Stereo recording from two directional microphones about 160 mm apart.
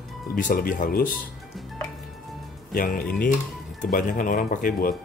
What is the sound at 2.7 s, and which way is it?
Speech, 65° left (ahead or behind).